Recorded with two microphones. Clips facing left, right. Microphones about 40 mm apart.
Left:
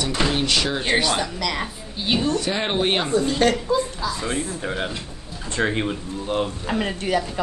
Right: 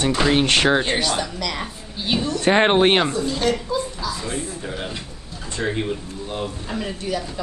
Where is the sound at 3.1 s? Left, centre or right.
Left.